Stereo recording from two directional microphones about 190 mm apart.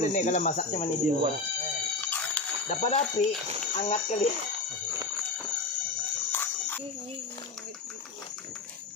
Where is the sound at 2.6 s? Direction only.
35° left (ahead or behind).